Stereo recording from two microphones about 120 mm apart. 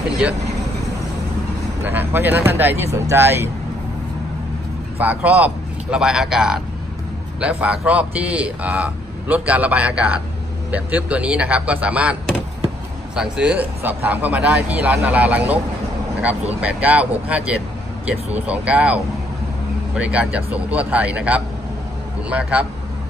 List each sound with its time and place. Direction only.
1.9 s speech: 15° right (ahead or behind)
5.0 s a man's voice: 10° right (ahead or behind)
16.6 s a man's voice: 10° right (ahead or behind)
20.0 s a man's voice: 10° right (ahead or behind)